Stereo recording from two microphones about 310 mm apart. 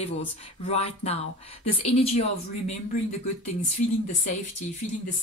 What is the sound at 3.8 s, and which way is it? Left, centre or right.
Speech, left.